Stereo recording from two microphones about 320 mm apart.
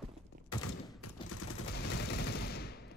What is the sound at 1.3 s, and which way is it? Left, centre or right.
Fusillade, left.